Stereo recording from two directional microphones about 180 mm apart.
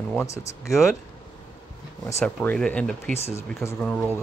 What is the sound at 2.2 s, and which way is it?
Speech, 5° left (ahead or behind).